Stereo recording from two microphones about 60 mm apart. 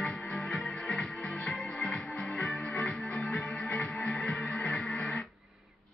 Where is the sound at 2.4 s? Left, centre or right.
Centre.